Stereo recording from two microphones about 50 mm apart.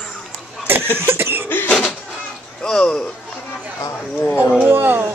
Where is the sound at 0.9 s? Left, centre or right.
Right.